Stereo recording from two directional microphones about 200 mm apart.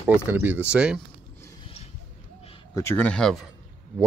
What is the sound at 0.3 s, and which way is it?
Speech, 10° right (ahead or behind).